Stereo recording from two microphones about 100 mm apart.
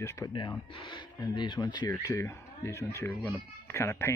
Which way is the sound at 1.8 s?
30° left (ahead or behind).